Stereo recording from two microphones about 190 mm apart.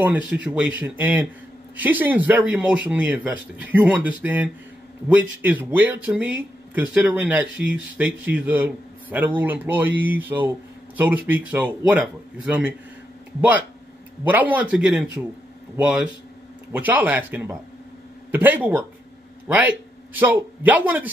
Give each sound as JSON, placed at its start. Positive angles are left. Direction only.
{"t": 0.0, "sound": "speech", "side_deg": -5}
{"t": 7.4, "sound": "speech", "side_deg": -75}
{"t": 7.7, "sound": "a man's voice", "side_deg": -10}